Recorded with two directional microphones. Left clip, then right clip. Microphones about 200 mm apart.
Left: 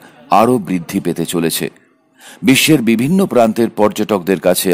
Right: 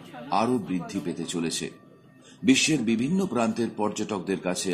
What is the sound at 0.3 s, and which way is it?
Speech, 55° left (ahead or behind).